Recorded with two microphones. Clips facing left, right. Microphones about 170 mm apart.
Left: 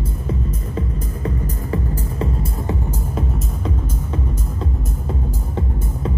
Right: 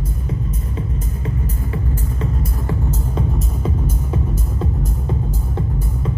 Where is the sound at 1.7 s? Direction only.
35° left (ahead or behind).